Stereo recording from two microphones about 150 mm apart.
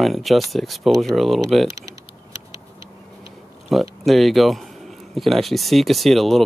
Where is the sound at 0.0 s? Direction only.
Centre (ahead or behind).